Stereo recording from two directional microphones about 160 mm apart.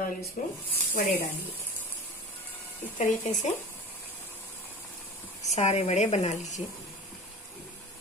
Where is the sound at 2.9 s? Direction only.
50° left (ahead or behind).